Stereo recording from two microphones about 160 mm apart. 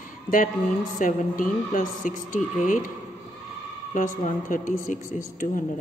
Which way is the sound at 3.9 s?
55° left (ahead or behind).